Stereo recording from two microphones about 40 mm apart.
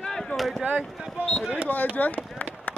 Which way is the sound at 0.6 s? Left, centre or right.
Right.